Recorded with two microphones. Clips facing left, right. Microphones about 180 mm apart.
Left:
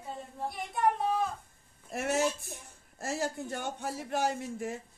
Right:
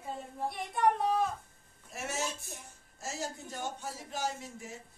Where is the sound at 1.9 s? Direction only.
60° left (ahead or behind).